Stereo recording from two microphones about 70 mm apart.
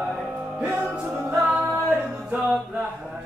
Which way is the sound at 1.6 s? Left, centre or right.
Right.